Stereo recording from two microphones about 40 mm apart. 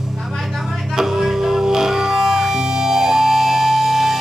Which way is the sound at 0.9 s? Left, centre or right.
Centre.